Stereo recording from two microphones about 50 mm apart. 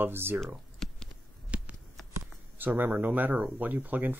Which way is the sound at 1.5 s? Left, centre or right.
Right.